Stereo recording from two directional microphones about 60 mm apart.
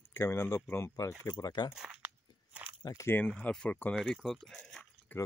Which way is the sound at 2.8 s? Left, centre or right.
Left.